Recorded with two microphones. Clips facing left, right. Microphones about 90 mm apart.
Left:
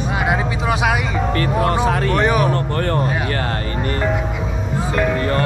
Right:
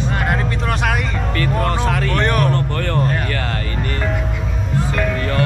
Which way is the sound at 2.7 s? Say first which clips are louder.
Left 2 dB; 35° left (ahead or behind).